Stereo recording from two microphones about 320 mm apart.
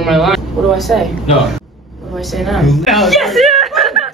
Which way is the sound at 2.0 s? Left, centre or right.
Centre.